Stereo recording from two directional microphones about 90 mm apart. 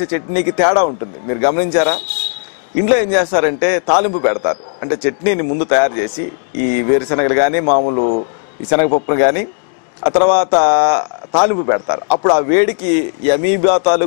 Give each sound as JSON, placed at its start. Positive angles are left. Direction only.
{"t": 0.0, "sound": "a man's voice", "side_deg": 15}